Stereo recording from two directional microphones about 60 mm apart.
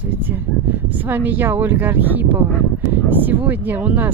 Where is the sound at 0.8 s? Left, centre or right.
Right.